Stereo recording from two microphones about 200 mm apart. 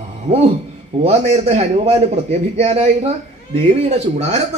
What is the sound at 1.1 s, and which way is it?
A man's voice, 30° right (ahead or behind).